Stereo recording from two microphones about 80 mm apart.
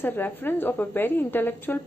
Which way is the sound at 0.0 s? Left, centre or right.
Left.